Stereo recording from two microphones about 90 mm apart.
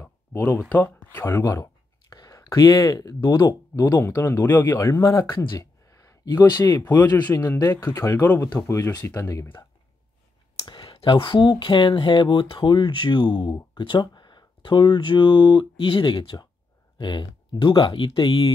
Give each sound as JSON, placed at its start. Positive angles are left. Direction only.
{"t": 0.0, "sound": "speech", "side_deg": 20}
{"t": 1.4, "sound": "a sound", "side_deg": 40}
{"t": 2.1, "sound": "speech", "side_deg": 40}
{"t": 3.7, "sound": "speech", "side_deg": 25}
{"t": 8.5, "sound": "speech", "side_deg": 30}
{"t": 10.6, "sound": "speech", "side_deg": 70}